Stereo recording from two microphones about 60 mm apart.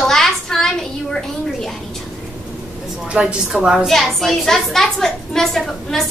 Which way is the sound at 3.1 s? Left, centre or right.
Centre.